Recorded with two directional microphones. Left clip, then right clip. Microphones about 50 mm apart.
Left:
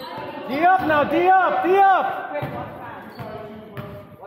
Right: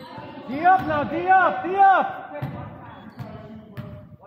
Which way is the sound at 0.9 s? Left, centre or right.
Left.